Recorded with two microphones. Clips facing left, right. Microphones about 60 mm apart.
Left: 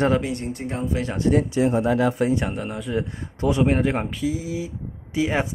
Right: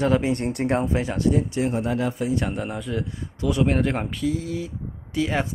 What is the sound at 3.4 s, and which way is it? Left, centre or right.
Speech, left.